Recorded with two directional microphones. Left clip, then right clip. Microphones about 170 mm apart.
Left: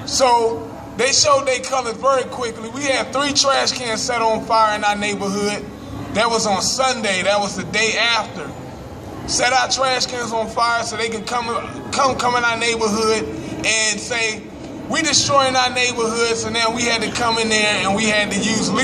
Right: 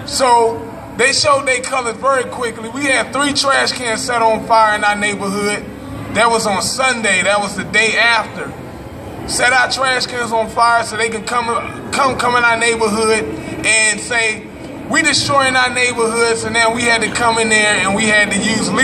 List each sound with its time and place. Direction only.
0.1 s a man's voice: 15° left (ahead or behind)
9.3 s a man's voice: 15° left (ahead or behind)